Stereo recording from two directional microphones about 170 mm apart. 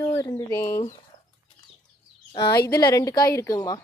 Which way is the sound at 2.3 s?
25° left (ahead or behind).